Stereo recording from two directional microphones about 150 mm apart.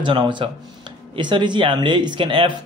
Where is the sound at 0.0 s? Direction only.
30° right (ahead or behind).